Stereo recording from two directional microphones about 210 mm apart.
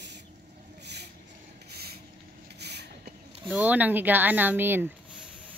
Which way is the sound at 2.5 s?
50° right (ahead or behind).